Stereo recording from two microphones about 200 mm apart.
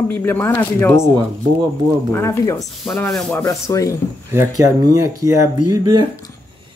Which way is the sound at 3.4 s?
15° left (ahead or behind).